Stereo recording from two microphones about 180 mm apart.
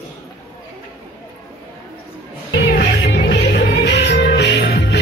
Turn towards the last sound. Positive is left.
turn(degrees=65)  # may be behind; listen again after turning